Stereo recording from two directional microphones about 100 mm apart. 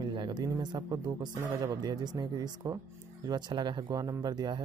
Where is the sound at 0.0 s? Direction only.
45° right (ahead or behind).